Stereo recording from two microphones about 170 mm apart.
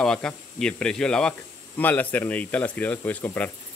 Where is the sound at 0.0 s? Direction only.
5° left (ahead or behind).